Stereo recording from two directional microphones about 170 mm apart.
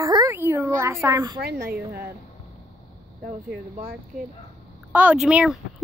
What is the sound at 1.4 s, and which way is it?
Speech, 70° right (ahead or behind).